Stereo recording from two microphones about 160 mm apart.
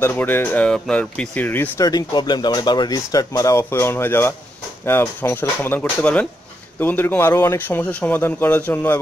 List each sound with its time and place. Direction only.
0.0 s a man's voice: 15° left (ahead or behind)
1.9 s a man's voice: 25° left (ahead or behind)